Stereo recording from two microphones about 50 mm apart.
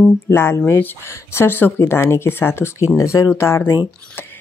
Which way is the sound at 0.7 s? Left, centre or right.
Left.